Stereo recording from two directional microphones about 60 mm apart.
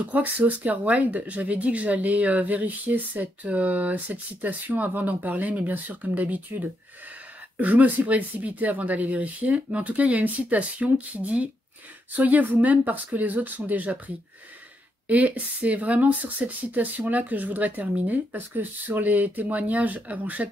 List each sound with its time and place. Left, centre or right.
0.0 s speech: right
7.5 s speech: right